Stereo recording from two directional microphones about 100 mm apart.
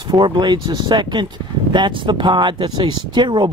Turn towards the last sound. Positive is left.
turn(degrees=-50)  # may be behind; listen again after turning